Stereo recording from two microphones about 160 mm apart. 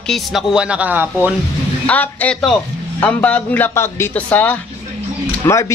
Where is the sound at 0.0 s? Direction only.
Centre (ahead or behind).